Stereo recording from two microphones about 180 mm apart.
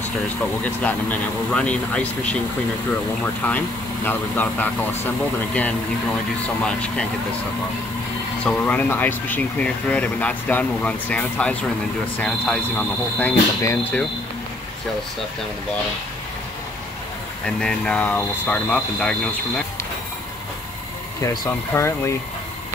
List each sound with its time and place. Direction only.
0.7 s speech: 10° left (ahead or behind)
3.4 s speech: 10° left (ahead or behind)
8.5 s speech: 10° left (ahead or behind)
17.5 s speech: 5° left (ahead or behind)
21.2 s speech: 15° left (ahead or behind)